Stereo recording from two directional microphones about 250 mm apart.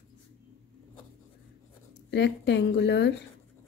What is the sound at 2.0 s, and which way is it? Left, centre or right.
Speech, left.